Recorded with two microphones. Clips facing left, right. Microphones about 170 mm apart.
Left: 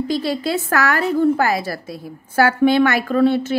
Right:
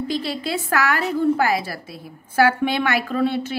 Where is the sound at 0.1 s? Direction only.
45° left (ahead or behind).